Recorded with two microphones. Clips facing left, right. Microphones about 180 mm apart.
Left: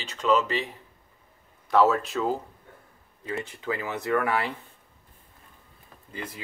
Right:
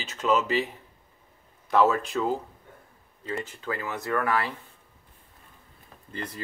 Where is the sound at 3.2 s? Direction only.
15° left (ahead or behind).